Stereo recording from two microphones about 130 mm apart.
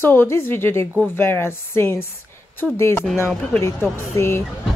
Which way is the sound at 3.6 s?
20° left (ahead or behind).